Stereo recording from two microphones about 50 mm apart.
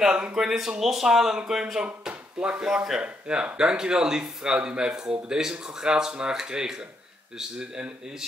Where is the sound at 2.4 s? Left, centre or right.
Right.